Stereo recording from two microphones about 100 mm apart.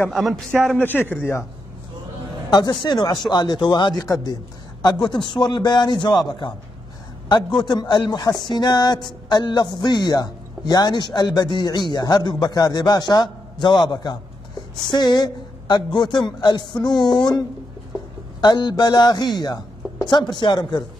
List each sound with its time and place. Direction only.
0.1 s a man's voice: 5° right (ahead or behind)
0.7 s a man's voice: 20° left (ahead or behind)
2.5 s a man's voice: 45° left (ahead or behind)
18.4 s a man's voice: 50° left (ahead or behind)